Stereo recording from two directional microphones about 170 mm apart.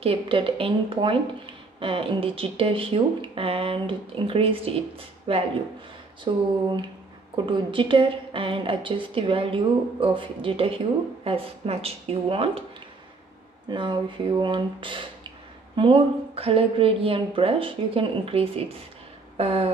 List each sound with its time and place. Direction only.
0.0 s speech: 30° right (ahead or behind)
7.4 s speech: 30° right (ahead or behind)
13.7 s speech: 30° right (ahead or behind)
19.3 s a sound: 35° right (ahead or behind)